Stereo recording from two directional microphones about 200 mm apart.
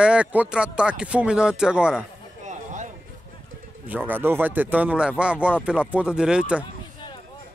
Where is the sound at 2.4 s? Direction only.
40° right (ahead or behind).